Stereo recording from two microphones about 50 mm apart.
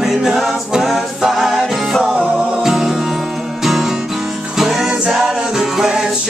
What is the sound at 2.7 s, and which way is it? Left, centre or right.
Music, centre.